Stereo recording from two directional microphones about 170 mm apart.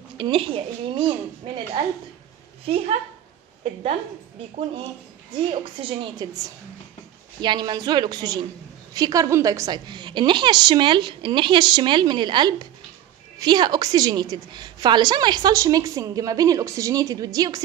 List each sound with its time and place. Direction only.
0.2 s a woman's voice: 30° right (ahead or behind)
5.5 s a woman's voice: 30° right (ahead or behind)
7.4 s a woman's voice: 25° right (ahead or behind)